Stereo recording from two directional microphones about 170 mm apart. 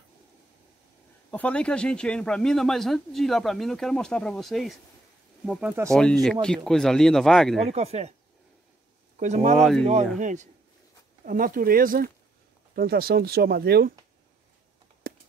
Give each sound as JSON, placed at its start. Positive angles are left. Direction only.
{"t": 1.3, "sound": "speech", "side_deg": 5}
{"t": 5.9, "sound": "speech", "side_deg": 5}
{"t": 7.7, "sound": "speech", "side_deg": -40}
{"t": 9.2, "sound": "speech", "side_deg": -45}
{"t": 9.6, "sound": "speech", "side_deg": 0}
{"t": 10.1, "sound": "speech", "side_deg": -45}